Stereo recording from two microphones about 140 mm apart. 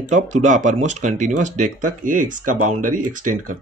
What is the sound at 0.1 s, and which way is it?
Speech, 60° right (ahead or behind).